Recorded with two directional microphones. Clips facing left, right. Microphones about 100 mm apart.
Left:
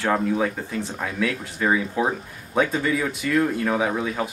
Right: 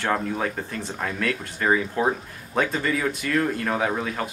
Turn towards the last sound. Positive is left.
turn(degrees=5)  # may be behind; listen again after turning